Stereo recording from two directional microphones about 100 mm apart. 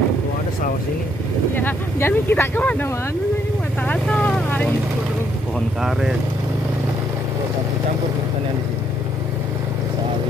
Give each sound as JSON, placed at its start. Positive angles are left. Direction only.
{"t": 1.5, "sound": "speech", "side_deg": 20}
{"t": 5.8, "sound": "speech", "side_deg": -5}